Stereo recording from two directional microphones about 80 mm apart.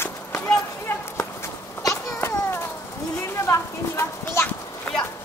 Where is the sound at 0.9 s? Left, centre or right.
Left.